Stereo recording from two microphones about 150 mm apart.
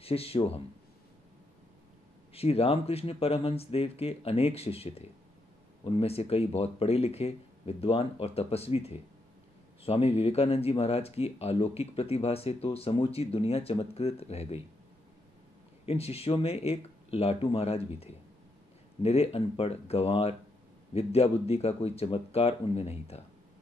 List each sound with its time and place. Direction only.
0.0 s speech: 40° left (ahead or behind)
2.3 s speech: 40° left (ahead or behind)
15.8 s speech: 40° left (ahead or behind)